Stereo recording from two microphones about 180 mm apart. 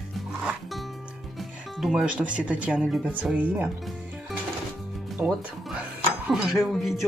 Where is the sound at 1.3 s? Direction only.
Centre (ahead or behind).